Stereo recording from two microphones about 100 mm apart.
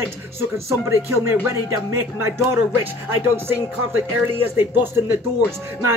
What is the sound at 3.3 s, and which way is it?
Speech, 20° right (ahead or behind).